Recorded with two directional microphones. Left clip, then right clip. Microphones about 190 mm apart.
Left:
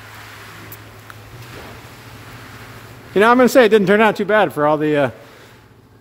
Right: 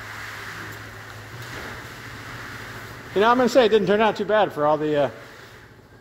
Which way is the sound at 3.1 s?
40° left (ahead or behind).